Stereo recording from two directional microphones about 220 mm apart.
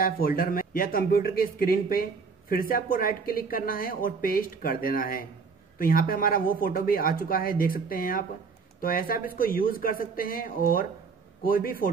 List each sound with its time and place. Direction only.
0.0 s speech: 40° left (ahead or behind)